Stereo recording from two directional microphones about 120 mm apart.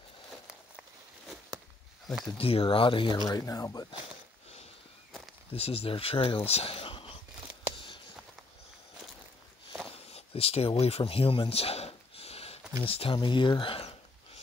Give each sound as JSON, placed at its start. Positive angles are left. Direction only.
{"t": 0.5, "sound": "walk", "side_deg": 0}
{"t": 2.0, "sound": "speech", "side_deg": 5}
{"t": 2.3, "sound": "speech", "side_deg": 50}
{"t": 3.3, "sound": "speech", "side_deg": 30}
{"t": 5.5, "sound": "speech", "side_deg": 55}
{"t": 7.7, "sound": "a sound", "side_deg": 45}
{"t": 9.9, "sound": "a sound", "side_deg": 55}
{"t": 12.8, "sound": "speech", "side_deg": 50}